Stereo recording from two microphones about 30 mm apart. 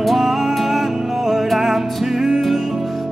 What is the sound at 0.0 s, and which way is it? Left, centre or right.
Music, centre.